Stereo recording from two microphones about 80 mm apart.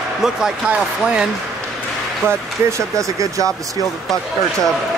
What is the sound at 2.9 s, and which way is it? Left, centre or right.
Speech, right.